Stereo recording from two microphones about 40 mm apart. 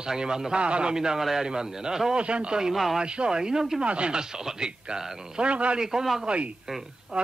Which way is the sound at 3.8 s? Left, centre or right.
Right.